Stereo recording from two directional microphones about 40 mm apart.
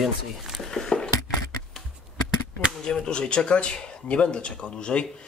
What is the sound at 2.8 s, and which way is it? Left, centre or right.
Speech, centre.